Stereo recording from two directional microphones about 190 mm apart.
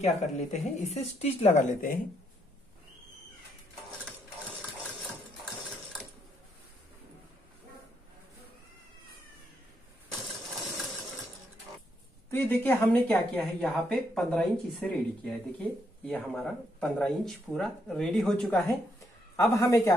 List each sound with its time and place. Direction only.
0.0 s speech: 35° left (ahead or behind)
12.3 s speech: 10° left (ahead or behind)
19.3 s a man's voice: 15° left (ahead or behind)